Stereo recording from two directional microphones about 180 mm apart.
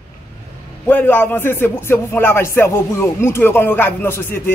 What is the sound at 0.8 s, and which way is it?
A man's voice, 10° left (ahead or behind).